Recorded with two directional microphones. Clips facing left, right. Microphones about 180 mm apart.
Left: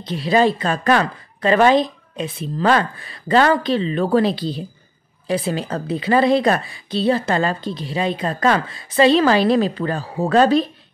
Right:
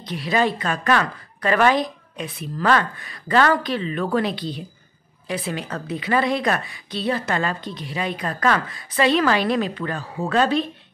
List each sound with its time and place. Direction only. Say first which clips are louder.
0.0 s a woman's voice: left 5 dB; 30° left (ahead or behind)